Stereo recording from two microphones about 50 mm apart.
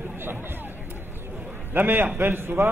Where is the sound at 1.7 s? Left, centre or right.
Right.